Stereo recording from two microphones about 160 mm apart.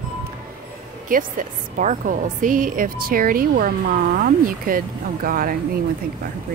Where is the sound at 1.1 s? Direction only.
55° right (ahead or behind).